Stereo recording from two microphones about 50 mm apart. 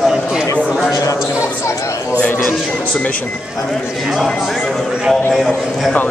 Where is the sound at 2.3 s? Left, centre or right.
Left.